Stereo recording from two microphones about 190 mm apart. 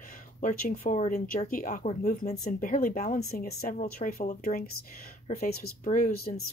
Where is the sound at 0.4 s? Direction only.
40° left (ahead or behind).